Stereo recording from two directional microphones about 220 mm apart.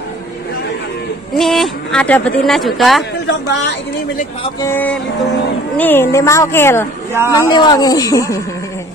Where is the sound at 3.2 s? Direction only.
55° left (ahead or behind).